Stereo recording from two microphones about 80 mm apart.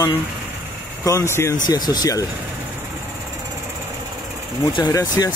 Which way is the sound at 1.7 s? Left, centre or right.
Left.